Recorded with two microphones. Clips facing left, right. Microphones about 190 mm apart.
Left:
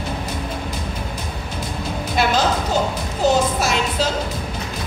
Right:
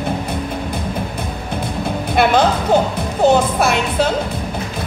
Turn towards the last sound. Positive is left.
turn(degrees=-60)  # may be behind; listen again after turning